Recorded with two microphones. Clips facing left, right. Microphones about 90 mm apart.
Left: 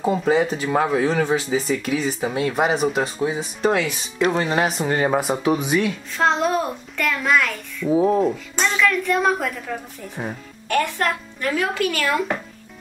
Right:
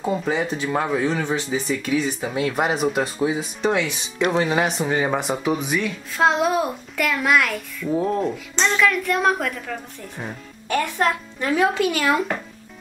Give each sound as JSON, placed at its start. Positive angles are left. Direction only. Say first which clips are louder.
{"t": 0.0, "sound": "speech", "louder": "left 4 dB", "side_deg": 0}
{"t": 7.9, "sound": "speech", "louder": "left 4 dB", "side_deg": 10}
{"t": 10.7, "sound": "a child's voice", "louder": "even", "side_deg": -15}